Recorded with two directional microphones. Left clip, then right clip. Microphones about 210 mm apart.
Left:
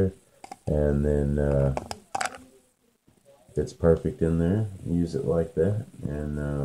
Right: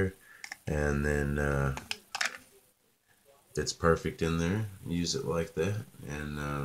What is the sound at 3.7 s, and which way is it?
Speech, 25° right (ahead or behind).